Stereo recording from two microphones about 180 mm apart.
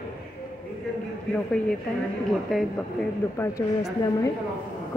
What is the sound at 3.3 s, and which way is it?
Speech, 15° left (ahead or behind).